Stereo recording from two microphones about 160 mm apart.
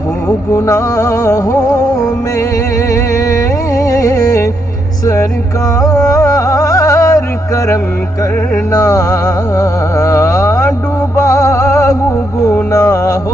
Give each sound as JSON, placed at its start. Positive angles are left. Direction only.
{"t": 0.5, "sound": "music", "side_deg": 15}
{"t": 5.8, "sound": "music", "side_deg": 20}